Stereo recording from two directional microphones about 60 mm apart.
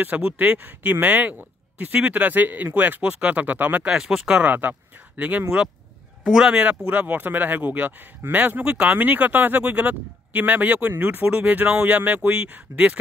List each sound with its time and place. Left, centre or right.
0.0 s speech: right
3.9 s speech: centre
4.4 s speech: right
6.2 s speech: centre